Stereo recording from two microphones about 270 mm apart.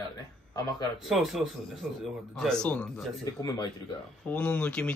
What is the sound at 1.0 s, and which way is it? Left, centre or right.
A man's voice, centre.